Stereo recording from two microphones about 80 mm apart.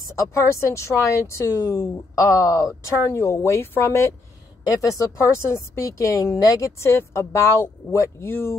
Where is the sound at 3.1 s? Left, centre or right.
Left.